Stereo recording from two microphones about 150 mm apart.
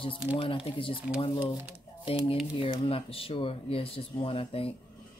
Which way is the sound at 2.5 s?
35° left (ahead or behind).